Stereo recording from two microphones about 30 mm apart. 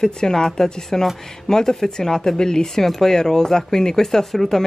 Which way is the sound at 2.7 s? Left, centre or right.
Centre.